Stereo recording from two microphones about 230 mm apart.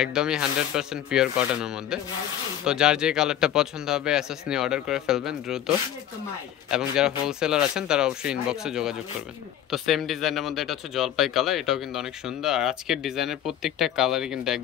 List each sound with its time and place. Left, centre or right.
0.0 s speech: centre
6.7 s speech: centre